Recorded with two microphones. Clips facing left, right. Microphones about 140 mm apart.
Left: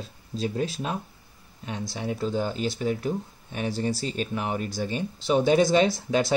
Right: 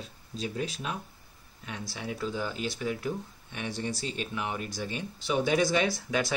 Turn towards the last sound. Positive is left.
turn(degrees=25)  # may be behind; listen again after turning